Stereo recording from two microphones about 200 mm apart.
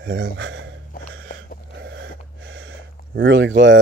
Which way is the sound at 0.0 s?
65° right (ahead or behind).